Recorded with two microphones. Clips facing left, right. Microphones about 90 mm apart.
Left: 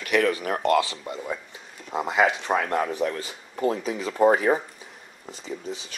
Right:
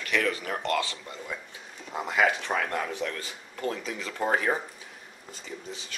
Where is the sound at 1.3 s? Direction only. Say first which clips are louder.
Left 5 dB; 5° left (ahead or behind).